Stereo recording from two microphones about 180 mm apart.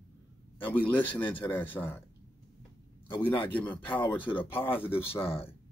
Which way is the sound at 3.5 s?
10° left (ahead or behind).